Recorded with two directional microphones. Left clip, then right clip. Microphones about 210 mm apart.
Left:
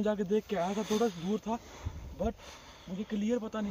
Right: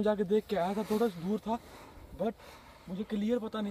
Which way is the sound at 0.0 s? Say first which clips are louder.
Right 2 dB; centre (ahead or behind).